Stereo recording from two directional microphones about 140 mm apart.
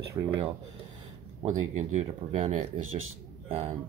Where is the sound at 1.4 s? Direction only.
50° right (ahead or behind).